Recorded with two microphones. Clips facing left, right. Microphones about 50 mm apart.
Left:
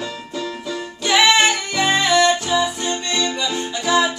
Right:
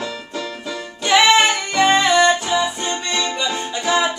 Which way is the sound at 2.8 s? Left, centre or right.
Right.